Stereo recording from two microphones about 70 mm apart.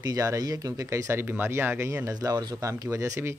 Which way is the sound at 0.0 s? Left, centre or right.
Right.